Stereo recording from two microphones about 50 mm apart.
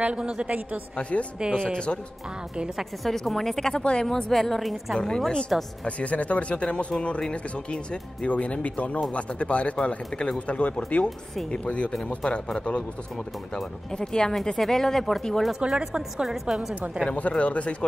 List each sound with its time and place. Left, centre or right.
0.0 s a woman's voice: centre
1.1 s speech: left
2.8 s a woman's voice: centre
3.7 s speech: left
4.0 s speech: centre
4.9 s speech: centre
5.5 s a woman's voice: centre
5.9 s speech: left
13.9 s speech: centre
15.6 s a woman's voice: centre
17.1 s speech: left